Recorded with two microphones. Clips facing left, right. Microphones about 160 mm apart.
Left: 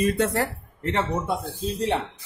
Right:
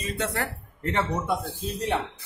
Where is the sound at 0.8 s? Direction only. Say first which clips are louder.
Left 1 dB; 25° left (ahead or behind).